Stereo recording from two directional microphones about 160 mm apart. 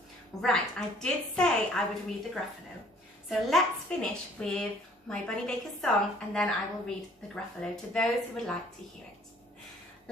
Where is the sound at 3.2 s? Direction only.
Centre (ahead or behind).